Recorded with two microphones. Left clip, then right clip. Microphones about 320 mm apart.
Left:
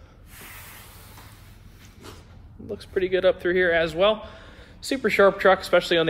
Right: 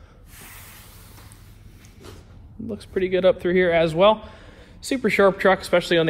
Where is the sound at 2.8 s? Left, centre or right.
Centre.